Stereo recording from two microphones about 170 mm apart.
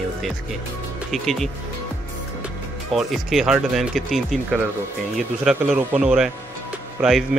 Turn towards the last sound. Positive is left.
turn(degrees=0)  # may be behind; listen again after turning